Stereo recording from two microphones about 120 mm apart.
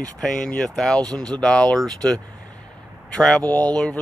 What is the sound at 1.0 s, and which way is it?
Speech, 35° right (ahead or behind).